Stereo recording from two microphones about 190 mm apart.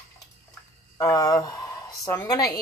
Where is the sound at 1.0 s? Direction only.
20° left (ahead or behind).